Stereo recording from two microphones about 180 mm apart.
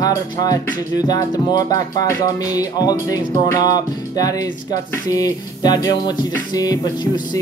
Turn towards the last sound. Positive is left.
turn(degrees=20)  # may be behind; listen again after turning